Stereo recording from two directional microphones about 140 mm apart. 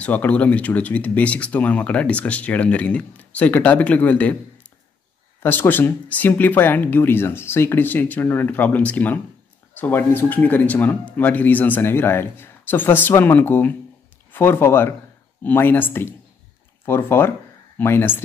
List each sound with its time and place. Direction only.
0.0 s speech: 10° left (ahead or behind)
5.4 s speech: 15° left (ahead or behind)